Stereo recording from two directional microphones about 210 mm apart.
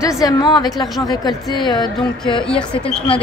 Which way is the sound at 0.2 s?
20° left (ahead or behind).